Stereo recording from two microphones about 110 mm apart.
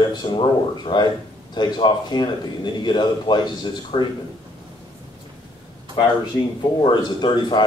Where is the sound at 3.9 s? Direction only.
60° left (ahead or behind).